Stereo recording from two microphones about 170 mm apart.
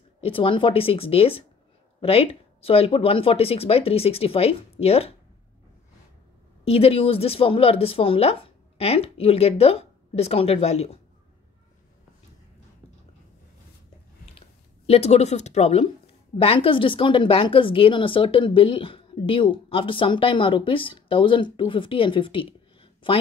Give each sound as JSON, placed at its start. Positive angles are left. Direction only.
{"t": 0.2, "sound": "a woman's voice", "side_deg": 30}
{"t": 6.6, "sound": "a woman's voice", "side_deg": 35}
{"t": 14.9, "sound": "a woman's voice", "side_deg": 40}